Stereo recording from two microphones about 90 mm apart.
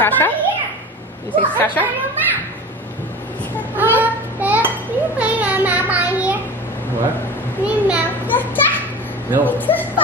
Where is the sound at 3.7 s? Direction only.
20° right (ahead or behind).